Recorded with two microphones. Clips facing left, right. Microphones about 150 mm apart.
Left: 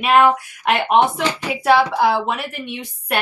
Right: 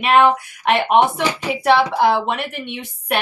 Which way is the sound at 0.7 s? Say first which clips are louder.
Right 1 dB; 10° right (ahead or behind).